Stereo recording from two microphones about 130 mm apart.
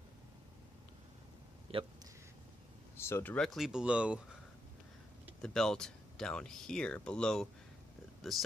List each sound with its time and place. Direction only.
1.7 s speech: 50° right (ahead or behind)
3.0 s speech: 20° left (ahead or behind)
3.3 s speech: centre (ahead or behind)
5.4 s speech: 5° left (ahead or behind)